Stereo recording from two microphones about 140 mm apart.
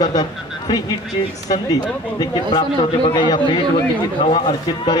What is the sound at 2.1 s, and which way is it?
A man's voice, 30° left (ahead or behind).